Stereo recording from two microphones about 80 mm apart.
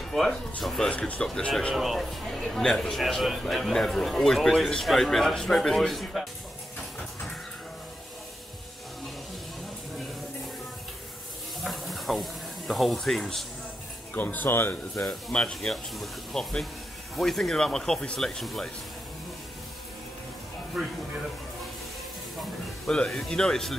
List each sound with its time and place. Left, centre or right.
0.0 s speech: centre
0.9 s speech: centre
1.8 s a man's voice: centre
11.6 s a sound: centre
14.1 s speech: left
15.0 s a man's voice: centre
20.7 s a man's voice: centre
22.8 s speech: centre